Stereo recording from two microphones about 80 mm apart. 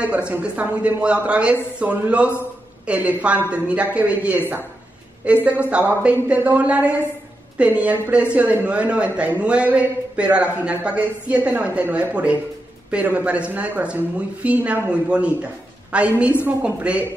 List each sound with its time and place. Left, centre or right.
0.0 s a man's voice: centre